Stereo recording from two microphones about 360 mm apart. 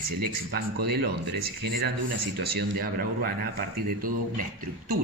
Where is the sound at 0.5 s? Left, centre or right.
Right.